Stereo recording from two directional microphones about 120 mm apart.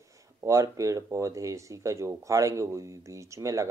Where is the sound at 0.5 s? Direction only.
25° right (ahead or behind).